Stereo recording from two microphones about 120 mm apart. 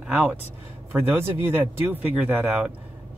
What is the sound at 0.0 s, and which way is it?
Speech, 10° right (ahead or behind).